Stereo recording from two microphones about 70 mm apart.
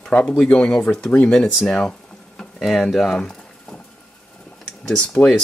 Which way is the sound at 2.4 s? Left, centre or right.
Centre.